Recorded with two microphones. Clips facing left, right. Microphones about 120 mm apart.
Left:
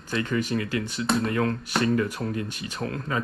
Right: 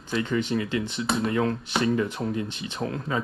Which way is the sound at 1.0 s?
Centre (ahead or behind).